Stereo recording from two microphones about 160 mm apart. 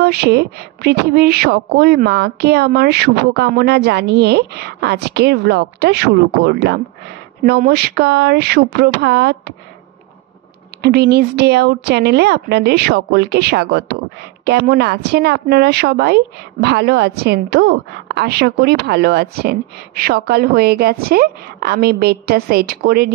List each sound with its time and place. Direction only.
0.0 s a woman's voice: 90° right
10.8 s a woman's voice: 90° right